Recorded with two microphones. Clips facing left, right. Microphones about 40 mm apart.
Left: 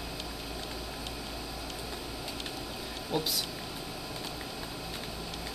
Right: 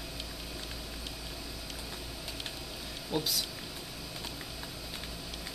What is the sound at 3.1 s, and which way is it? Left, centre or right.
Speech, centre.